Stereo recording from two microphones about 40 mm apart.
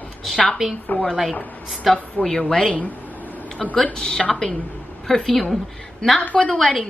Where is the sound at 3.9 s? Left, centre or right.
Centre.